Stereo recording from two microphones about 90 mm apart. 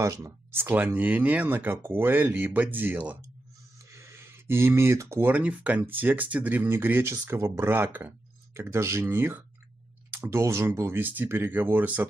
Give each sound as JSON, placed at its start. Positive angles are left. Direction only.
{"t": 0.0, "sound": "speech", "side_deg": -30}
{"t": 3.9, "sound": "a sound", "side_deg": -30}
{"t": 5.3, "sound": "speech", "side_deg": -15}